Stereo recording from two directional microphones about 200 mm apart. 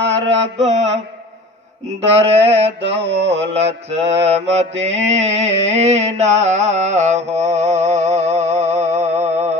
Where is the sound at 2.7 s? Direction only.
60° right (ahead or behind).